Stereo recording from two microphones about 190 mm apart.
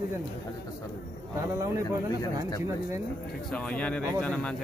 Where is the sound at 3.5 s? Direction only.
5° left (ahead or behind).